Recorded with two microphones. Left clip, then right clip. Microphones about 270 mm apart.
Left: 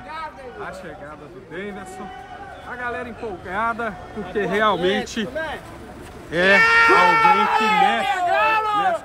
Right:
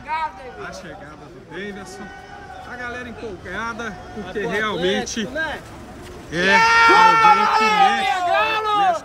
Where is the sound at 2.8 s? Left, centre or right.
Centre.